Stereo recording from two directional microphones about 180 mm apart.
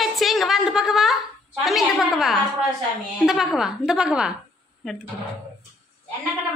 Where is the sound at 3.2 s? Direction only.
Centre (ahead or behind).